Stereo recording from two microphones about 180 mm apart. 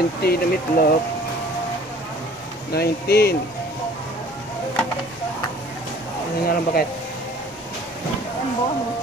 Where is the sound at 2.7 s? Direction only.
60° left (ahead or behind).